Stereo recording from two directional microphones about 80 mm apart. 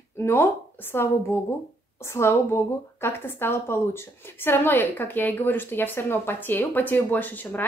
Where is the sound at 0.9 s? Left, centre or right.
Left.